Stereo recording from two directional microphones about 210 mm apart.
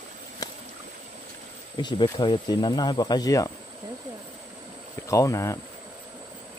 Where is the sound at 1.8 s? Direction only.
20° left (ahead or behind).